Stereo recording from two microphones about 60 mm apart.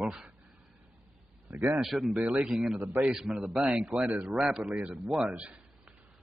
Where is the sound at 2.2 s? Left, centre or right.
Right.